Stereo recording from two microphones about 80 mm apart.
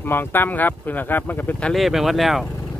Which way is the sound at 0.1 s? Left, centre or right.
Left.